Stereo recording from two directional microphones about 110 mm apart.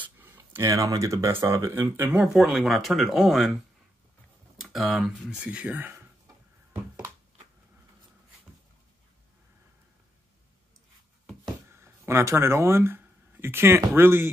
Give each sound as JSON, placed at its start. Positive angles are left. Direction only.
{"t": 0.2, "sound": "speech", "side_deg": -25}
{"t": 4.6, "sound": "speech", "side_deg": 0}
{"t": 11.7, "sound": "speech", "side_deg": -25}